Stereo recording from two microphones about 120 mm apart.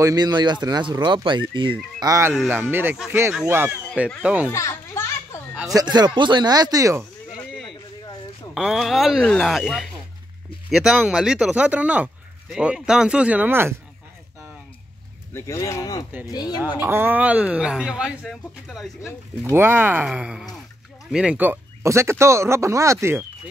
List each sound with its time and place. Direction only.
0.0 s speech: 35° right (ahead or behind)
2.0 s speech: 25° right (ahead or behind); by 4.5 s 10° right (ahead or behind)
4.5 s a child's voice: 25° left (ahead or behind)
5.5 s a sound: 10° right (ahead or behind)
5.8 s speech: 35° right (ahead or behind)
8.5 s speech: centre (ahead or behind); by 13.7 s 20° right (ahead or behind)
15.3 s speech: 25° left (ahead or behind)
16.8 s speech: 15° right (ahead or behind); by 18.9 s centre (ahead or behind)
19.5 s speech: 20° right (ahead or behind)